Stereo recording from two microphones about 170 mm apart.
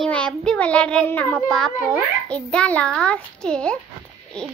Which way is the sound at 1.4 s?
5° left (ahead or behind).